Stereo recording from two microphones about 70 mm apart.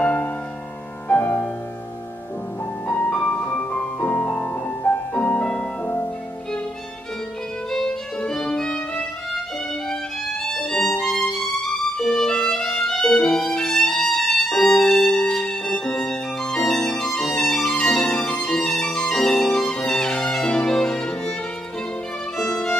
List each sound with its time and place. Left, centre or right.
0.0 s music: left
3.1 s music: centre
7.7 s violin: centre
10.4 s violin: centre
18.0 s music: centre
22.4 s music: centre